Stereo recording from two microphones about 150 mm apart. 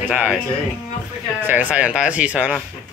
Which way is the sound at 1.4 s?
10° right (ahead or behind).